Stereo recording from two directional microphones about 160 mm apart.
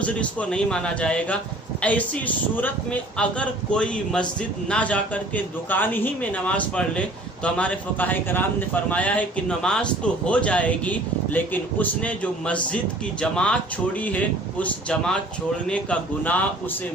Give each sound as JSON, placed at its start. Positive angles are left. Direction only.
{"t": 0.0, "sound": "a man's voice", "side_deg": 10}